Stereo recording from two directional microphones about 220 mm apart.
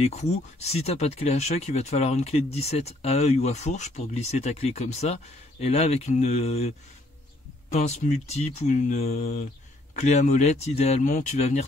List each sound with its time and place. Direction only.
0.0 s speech: 30° left (ahead or behind)
7.7 s speech: 30° left (ahead or behind)